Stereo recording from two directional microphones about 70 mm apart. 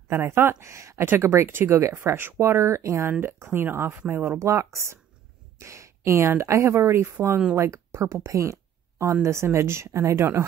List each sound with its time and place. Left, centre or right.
0.1 s speech: right